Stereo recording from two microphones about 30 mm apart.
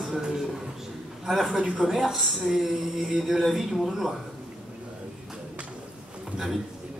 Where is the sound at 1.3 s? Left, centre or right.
Centre.